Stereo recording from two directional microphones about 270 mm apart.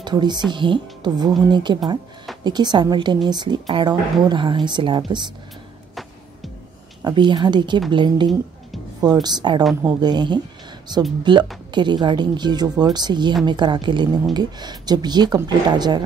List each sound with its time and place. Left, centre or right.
0.0 s speech: centre
7.0 s speech: centre